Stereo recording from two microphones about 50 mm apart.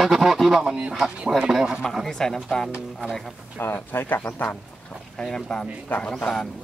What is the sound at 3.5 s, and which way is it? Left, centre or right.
Speech, left.